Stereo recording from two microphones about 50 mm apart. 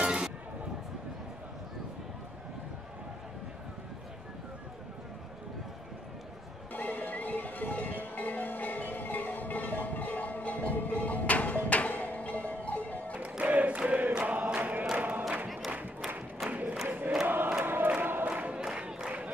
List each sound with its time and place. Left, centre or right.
0.0 s a sound: centre
6.7 s music: left
13.2 s a sound: right
14.2 s choir: right
15.4 s crowd: centre
16.4 s crowd: right
17.5 s choir: right
18.3 s a sound: right
18.8 s crowd: centre